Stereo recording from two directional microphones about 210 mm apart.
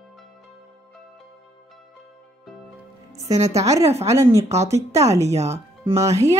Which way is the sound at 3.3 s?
30° right (ahead or behind).